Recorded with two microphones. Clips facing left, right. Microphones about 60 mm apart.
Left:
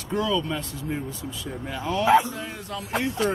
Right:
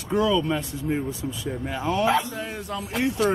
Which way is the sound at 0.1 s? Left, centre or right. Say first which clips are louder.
Right 3 dB; centre.